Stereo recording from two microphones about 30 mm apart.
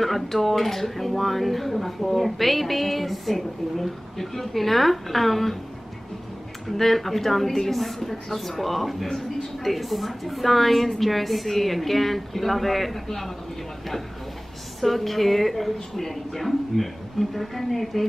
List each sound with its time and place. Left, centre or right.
0.0 s speech: centre
6.8 s a woman's voice: centre
14.8 s speech: centre